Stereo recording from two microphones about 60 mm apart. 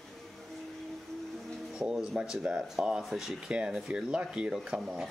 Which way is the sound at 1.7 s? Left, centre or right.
Centre.